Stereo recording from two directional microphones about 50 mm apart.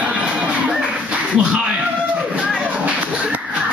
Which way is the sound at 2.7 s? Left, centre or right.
Right.